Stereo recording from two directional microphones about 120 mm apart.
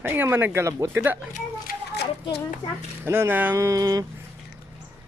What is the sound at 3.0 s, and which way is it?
Speech, 20° right (ahead or behind).